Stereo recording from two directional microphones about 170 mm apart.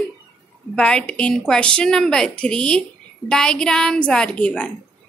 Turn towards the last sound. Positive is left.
turn(degrees=5)  # may be behind; listen again after turning